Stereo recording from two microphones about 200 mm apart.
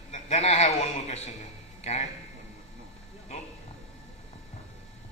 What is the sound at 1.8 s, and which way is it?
Speech, 35° left (ahead or behind).